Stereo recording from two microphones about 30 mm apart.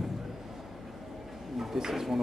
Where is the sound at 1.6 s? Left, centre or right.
Centre.